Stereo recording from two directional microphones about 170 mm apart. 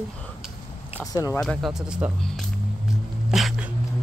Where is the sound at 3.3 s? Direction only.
Centre (ahead or behind).